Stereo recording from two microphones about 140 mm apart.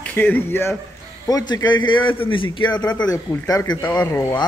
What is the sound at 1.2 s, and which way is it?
A man's voice, 25° left (ahead or behind).